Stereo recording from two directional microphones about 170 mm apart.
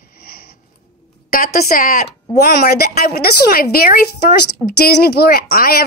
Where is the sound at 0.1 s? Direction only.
60° left (ahead or behind).